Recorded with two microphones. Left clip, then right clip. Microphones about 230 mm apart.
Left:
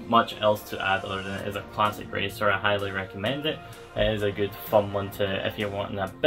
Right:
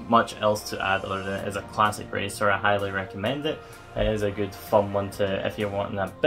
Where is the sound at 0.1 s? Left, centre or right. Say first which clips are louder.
Even; centre.